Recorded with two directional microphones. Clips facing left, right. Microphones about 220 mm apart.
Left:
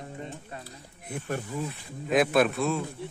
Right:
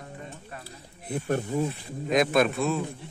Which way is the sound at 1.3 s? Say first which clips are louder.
Right 6 dB; 40° right (ahead or behind).